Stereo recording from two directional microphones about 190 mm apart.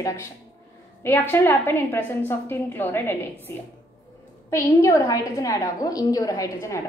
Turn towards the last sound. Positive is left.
turn(degrees=15)  # may be behind; listen again after turning